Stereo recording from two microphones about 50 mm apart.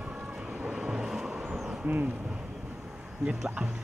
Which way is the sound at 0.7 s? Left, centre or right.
Centre.